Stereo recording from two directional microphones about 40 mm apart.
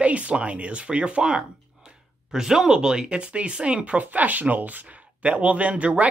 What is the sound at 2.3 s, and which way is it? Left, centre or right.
Speech, centre.